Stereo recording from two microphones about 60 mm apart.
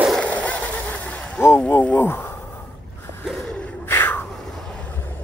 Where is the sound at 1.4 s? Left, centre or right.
Left.